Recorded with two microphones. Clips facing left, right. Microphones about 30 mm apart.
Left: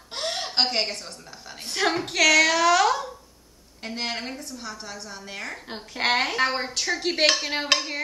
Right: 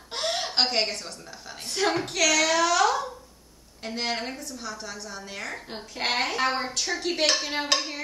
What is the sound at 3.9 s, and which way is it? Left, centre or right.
Speech, centre.